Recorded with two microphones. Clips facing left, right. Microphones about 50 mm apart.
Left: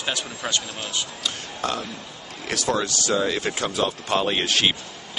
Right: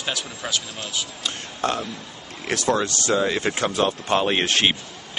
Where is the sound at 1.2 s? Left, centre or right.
Right.